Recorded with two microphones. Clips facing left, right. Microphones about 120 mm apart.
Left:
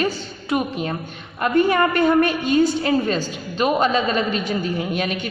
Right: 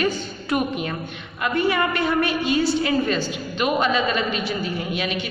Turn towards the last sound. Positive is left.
turn(degrees=45)  # may be behind; listen again after turning